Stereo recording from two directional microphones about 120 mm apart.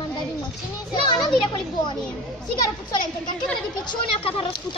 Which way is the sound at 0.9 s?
40° left (ahead or behind).